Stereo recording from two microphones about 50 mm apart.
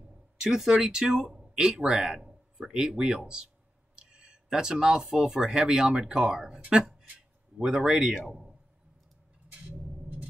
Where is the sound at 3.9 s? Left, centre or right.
Centre.